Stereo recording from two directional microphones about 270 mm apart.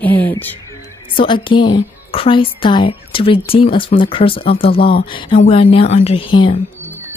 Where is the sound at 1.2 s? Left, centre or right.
Centre.